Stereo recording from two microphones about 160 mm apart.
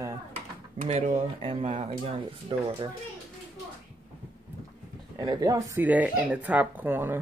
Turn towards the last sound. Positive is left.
turn(degrees=-15)  # may be behind; listen again after turning